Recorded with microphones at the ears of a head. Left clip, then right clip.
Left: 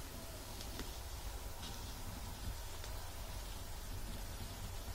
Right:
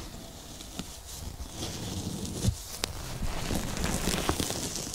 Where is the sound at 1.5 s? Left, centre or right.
Right.